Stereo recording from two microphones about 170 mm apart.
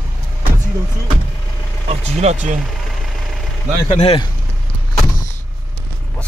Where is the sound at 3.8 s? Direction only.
35° left (ahead or behind).